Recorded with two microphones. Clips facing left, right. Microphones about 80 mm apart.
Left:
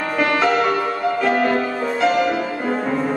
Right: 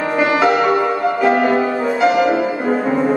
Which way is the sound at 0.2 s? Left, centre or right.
Centre.